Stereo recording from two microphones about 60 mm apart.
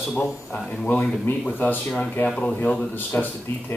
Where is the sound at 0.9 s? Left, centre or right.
Left.